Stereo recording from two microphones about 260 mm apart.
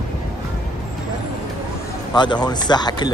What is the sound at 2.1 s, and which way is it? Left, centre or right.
Speech, centre.